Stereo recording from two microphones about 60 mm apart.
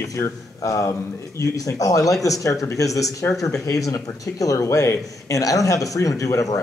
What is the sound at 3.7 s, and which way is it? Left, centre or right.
Speech, left.